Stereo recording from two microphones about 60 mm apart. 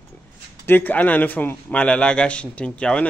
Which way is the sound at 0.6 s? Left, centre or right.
Left.